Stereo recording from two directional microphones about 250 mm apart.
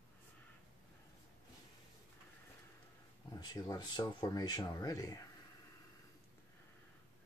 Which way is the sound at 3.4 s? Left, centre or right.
Centre.